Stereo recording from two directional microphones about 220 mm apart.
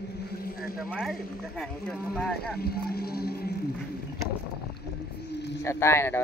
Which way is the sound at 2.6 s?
45° left (ahead or behind).